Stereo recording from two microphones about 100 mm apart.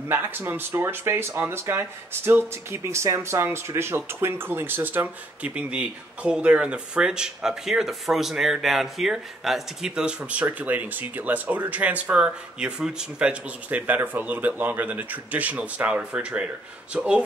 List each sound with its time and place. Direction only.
0.1 s speech: 20° right (ahead or behind)